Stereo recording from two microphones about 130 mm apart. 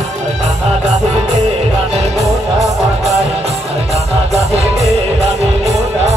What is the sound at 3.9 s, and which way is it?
Music, 55° right (ahead or behind).